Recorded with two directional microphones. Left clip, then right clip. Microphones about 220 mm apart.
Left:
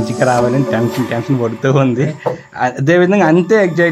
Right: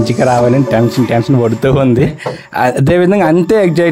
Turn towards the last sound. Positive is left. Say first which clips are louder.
# right 1 dB
turn(degrees=-35)  # may be behind; listen again after turning